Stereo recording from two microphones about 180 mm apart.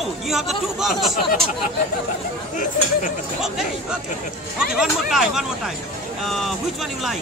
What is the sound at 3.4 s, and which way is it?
Speech, 5° right (ahead or behind).